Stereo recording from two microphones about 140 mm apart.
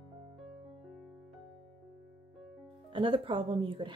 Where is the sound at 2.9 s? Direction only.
35° right (ahead or behind).